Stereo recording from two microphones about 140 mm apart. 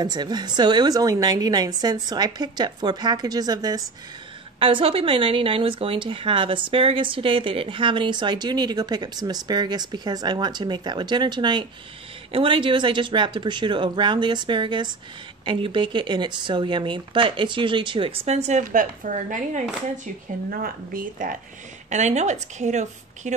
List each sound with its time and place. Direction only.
0.0 s a woman's voice: 30° right (ahead or behind)
4.6 s speech: 40° right (ahead or behind); by 19.6 s 70° right (ahead or behind)
20.4 s a woman's voice: 90° right
21.8 s a woman's voice: 55° right (ahead or behind)